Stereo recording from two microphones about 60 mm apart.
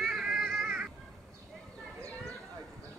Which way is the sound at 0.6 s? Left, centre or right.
Centre.